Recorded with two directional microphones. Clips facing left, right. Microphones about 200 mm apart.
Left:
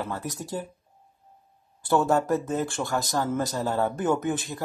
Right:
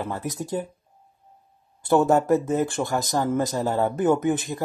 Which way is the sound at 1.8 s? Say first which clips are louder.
Right 4 dB; 20° right (ahead or behind).